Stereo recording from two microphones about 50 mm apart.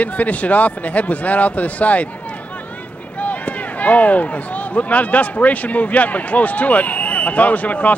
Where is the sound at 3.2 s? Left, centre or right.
Left.